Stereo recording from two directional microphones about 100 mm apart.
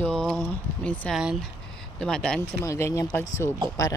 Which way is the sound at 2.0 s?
5° left (ahead or behind).